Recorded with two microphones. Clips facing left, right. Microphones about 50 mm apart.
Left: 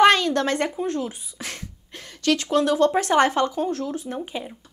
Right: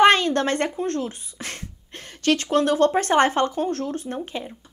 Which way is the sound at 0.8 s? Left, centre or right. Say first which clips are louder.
Even; centre.